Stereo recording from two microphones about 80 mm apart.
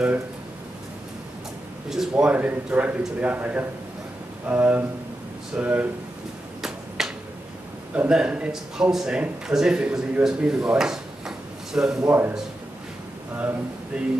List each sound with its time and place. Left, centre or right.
1.9 s a man's voice: centre
2.3 s a man's voice: centre
7.0 s a sound: centre
8.1 s a man's voice: centre
12.1 s speech: right
13.9 s a man's voice: centre